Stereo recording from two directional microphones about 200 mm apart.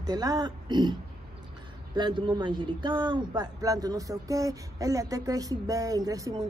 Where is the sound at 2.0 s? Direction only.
25° right (ahead or behind).